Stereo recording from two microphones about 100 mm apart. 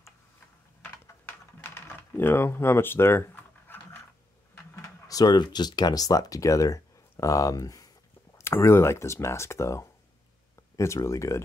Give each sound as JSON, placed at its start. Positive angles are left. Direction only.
{"t": 1.6, "sound": "typing", "side_deg": 20}
{"t": 4.7, "sound": "speech", "side_deg": 35}